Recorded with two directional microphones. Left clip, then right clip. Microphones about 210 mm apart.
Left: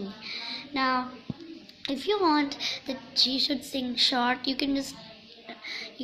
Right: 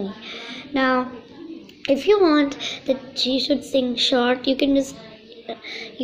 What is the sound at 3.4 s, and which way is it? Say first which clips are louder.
Speech: right 9 dB; 10° left (ahead or behind).